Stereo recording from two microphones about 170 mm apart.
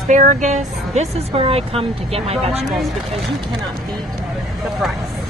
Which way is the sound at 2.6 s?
Centre (ahead or behind).